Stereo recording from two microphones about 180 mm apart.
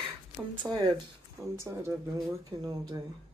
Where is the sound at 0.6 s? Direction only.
20° right (ahead or behind).